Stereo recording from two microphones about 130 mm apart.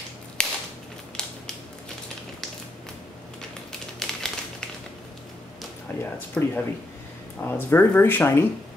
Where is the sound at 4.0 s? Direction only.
5° left (ahead or behind).